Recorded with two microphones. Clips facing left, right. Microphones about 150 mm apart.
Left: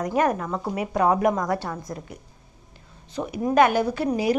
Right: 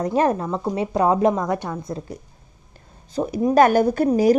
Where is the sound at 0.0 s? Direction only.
30° right (ahead or behind).